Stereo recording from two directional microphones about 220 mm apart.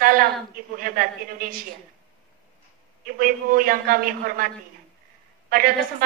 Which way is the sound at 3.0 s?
40° right (ahead or behind).